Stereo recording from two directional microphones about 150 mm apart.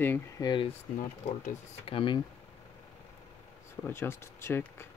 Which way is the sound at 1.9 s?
35° left (ahead or behind).